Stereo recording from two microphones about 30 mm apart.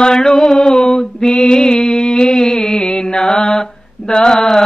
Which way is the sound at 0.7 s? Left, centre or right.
Centre.